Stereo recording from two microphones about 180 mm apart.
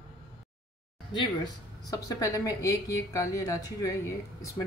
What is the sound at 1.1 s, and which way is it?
Speech, 25° left (ahead or behind).